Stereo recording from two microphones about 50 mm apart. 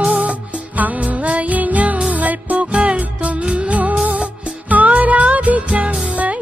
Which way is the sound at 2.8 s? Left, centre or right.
Right.